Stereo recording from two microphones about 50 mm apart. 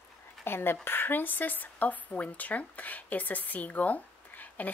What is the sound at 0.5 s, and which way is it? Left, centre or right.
A woman's voice, left.